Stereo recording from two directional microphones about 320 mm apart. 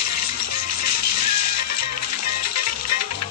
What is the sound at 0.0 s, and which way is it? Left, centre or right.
Music, left.